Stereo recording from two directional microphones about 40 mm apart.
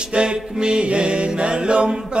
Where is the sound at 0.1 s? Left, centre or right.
Right.